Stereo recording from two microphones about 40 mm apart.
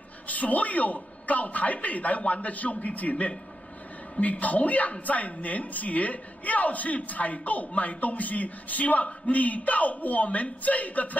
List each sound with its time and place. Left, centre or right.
0.3 s a woman's voice: left